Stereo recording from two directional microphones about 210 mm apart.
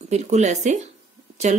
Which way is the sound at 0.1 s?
30° right (ahead or behind).